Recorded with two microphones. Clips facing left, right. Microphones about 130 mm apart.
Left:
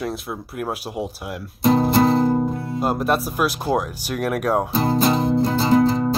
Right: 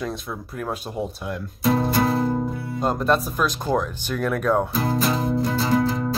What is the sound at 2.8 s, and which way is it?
Speech, 5° left (ahead or behind).